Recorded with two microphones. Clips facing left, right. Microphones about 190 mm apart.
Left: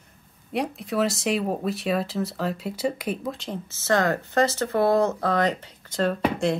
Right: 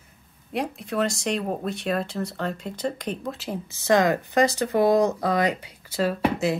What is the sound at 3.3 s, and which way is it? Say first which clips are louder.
Speech: right 2 dB; 10° right (ahead or behind).